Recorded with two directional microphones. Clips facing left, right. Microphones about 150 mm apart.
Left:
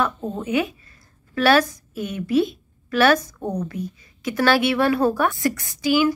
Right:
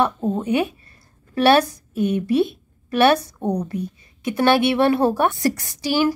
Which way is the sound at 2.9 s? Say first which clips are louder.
Right 1 dB; 25° right (ahead or behind).